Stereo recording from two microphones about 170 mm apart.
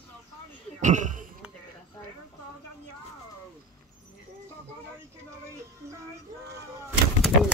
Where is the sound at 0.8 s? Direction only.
45° right (ahead or behind).